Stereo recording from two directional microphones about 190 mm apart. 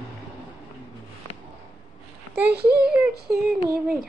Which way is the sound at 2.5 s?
55° right (ahead or behind).